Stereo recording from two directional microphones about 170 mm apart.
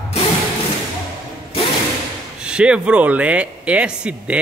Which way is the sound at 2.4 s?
5° right (ahead or behind).